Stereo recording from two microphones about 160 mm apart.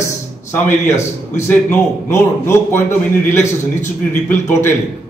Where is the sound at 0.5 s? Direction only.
15° left (ahead or behind).